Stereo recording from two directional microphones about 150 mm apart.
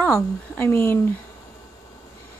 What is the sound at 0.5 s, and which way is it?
Speech, 15° left (ahead or behind).